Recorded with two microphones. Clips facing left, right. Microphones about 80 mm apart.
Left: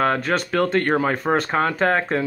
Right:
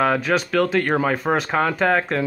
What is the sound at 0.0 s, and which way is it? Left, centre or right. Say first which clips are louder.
Speech: right 1 dB; centre.